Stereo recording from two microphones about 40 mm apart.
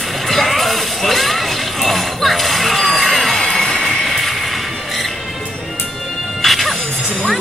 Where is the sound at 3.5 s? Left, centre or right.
Centre.